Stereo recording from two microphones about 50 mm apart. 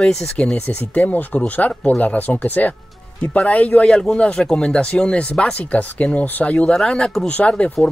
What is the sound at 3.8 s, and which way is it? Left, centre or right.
Speech, centre.